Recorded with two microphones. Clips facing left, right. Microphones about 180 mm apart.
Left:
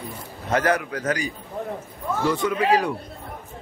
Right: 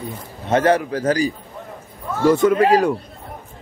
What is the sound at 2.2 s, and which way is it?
Speech, 45° right (ahead or behind).